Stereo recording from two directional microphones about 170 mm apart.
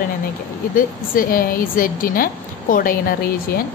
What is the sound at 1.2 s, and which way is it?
A woman's voice, 55° left (ahead or behind).